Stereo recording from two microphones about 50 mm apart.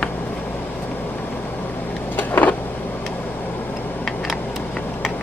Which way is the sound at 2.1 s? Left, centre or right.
Left.